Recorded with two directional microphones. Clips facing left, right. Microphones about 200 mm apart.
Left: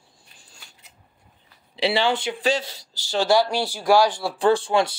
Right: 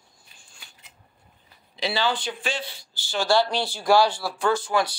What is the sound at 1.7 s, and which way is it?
Speech, 30° left (ahead or behind).